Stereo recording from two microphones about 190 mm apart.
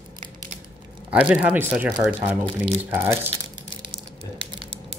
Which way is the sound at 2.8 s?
10° right (ahead or behind).